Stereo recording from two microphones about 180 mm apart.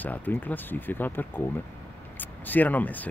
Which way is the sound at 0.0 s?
10° left (ahead or behind).